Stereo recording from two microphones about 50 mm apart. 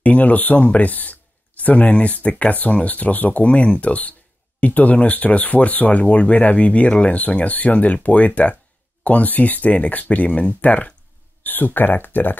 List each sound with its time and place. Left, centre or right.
0.0 s speech: left
3.4 s speech: left
11.4 s speech: left